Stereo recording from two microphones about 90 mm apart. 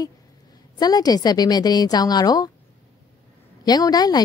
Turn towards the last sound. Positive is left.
turn(degrees=45)  # may be behind; listen again after turning